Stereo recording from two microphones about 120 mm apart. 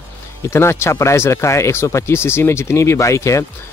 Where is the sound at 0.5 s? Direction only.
20° left (ahead or behind).